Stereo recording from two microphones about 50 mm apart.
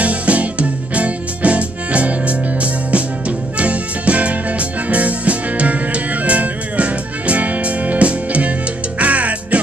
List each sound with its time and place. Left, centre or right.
0.0 s music: right